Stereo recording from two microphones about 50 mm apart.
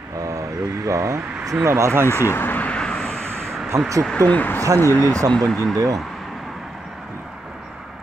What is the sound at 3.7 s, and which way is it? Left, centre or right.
Speech, right.